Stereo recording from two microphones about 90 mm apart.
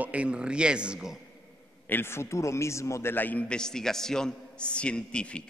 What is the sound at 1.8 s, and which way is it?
A man's voice, 25° left (ahead or behind).